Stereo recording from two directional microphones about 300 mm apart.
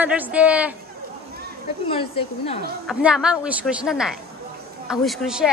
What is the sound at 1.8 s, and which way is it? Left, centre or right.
Speech, centre.